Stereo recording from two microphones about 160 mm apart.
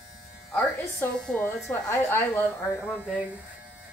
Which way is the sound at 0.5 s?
10° left (ahead or behind).